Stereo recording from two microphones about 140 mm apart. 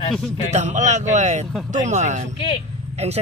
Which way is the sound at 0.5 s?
60° right (ahead or behind).